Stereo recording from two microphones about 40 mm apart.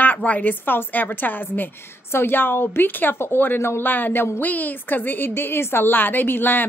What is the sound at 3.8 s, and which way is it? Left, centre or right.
A woman's voice, left.